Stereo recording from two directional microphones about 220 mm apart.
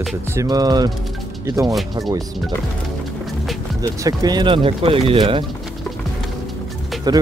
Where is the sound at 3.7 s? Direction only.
15° right (ahead or behind).